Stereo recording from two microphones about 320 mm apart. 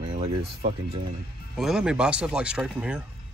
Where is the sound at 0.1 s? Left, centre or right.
Right.